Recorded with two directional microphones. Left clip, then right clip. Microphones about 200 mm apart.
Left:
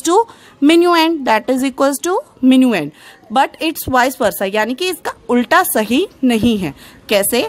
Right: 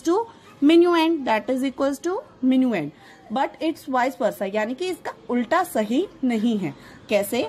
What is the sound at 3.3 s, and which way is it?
A woman's voice, 25° left (ahead or behind).